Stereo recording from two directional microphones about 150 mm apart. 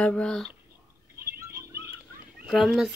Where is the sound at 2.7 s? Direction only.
5° right (ahead or behind).